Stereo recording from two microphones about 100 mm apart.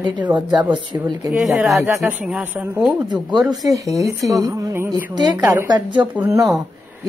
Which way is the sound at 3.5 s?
35° right (ahead or behind).